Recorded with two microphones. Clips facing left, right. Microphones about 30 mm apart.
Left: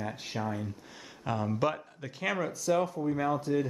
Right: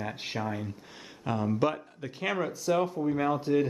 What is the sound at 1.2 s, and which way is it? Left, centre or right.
Speech, centre.